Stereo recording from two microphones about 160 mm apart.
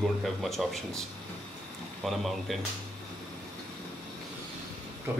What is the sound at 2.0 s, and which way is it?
Speech, centre (ahead or behind).